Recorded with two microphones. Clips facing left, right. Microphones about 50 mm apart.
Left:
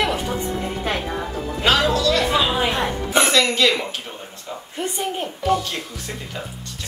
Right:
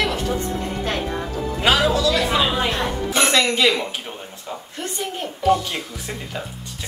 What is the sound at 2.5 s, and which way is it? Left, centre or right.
Speech, centre.